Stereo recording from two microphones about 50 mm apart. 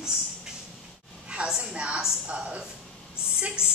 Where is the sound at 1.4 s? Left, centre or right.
Centre.